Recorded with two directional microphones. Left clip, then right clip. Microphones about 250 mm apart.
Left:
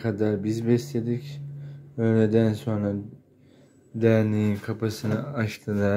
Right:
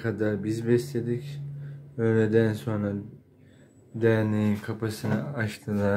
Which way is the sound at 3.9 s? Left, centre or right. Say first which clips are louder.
Left 2 dB; centre.